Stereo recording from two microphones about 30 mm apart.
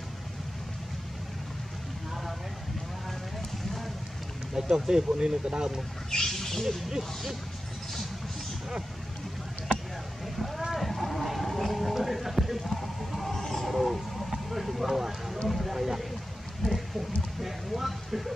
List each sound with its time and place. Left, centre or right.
4.6 s speech: right
6.0 s rodents: centre
10.7 s a sound: centre
12.7 s vehicle: centre
14.8 s speech: centre
15.4 s a sound: centre